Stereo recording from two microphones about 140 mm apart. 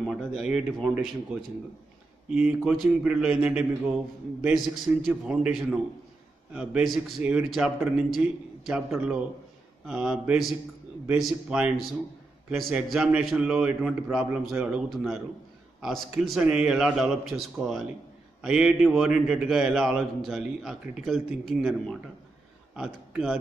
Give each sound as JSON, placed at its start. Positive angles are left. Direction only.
{"t": 0.0, "sound": "a man's voice", "side_deg": 0}
{"t": 2.2, "sound": "a man's voice", "side_deg": -5}